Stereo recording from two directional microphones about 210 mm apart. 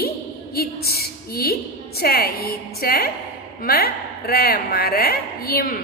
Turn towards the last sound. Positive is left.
turn(degrees=45)  # may be behind; listen again after turning